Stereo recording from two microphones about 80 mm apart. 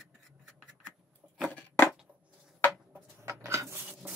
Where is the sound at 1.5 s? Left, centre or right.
Left.